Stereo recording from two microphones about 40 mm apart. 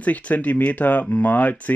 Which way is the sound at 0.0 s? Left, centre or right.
Left.